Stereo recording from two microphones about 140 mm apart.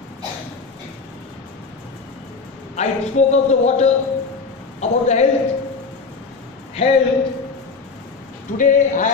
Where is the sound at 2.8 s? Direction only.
55° left (ahead or behind).